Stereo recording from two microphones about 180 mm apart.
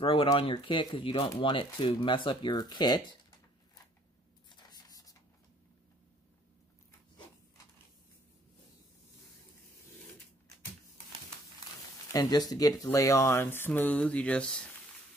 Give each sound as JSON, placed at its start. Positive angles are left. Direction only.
{"t": 0.0, "sound": "speech", "side_deg": 30}
{"t": 4.5, "sound": "a sound", "side_deg": 20}
{"t": 12.1, "sound": "speech", "side_deg": 20}